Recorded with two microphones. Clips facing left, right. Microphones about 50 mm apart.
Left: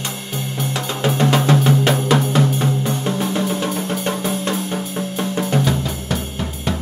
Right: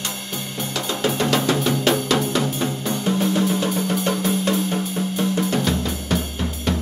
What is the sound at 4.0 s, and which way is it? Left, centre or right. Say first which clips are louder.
Drum: even; centre.